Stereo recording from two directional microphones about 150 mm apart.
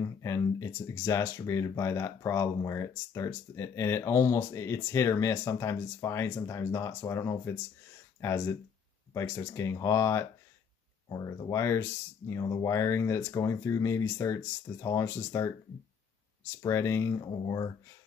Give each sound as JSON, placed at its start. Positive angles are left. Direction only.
{"t": 0.0, "sound": "speech", "side_deg": 20}
{"t": 16.6, "sound": "speech", "side_deg": 20}